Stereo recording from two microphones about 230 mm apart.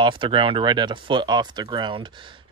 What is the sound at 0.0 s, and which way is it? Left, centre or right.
Speech, right.